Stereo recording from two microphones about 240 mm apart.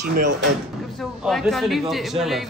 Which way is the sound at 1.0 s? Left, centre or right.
Centre.